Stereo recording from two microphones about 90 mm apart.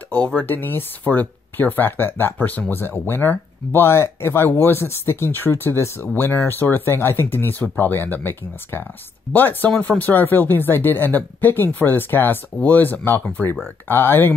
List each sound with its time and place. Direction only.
0.1 s speech: 15° left (ahead or behind)